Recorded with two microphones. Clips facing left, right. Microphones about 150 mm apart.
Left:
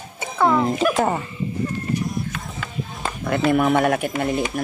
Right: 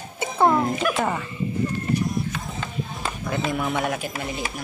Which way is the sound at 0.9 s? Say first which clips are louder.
Left 4 dB; 35° left (ahead or behind).